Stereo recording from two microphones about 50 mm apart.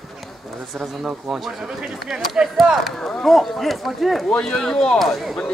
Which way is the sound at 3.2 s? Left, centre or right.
Centre.